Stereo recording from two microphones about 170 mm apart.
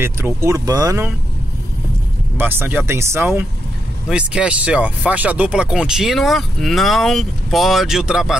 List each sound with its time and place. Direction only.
0.0 s speech: 15° right (ahead or behind)
2.3 s speech: 10° right (ahead or behind)